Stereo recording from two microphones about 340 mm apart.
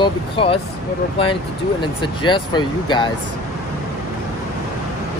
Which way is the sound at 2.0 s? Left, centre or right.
Centre.